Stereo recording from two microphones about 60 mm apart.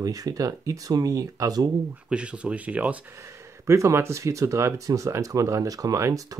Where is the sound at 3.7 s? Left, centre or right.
Right.